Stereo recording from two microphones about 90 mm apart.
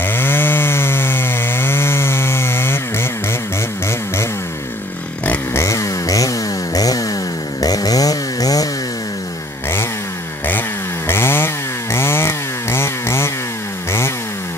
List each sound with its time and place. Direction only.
0.0 s chainsaw: 25° left (ahead or behind)
5.2 s a sound: 20° left (ahead or behind)
5.6 s chainsaw: 35° left (ahead or behind)
11.1 s chainsaw: 25° left (ahead or behind)